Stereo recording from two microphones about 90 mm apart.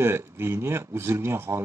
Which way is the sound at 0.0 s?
30° right (ahead or behind).